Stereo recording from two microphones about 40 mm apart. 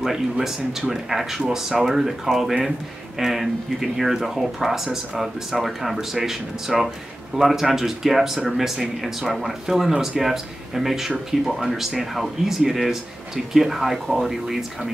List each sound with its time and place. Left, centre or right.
0.0 s speech: centre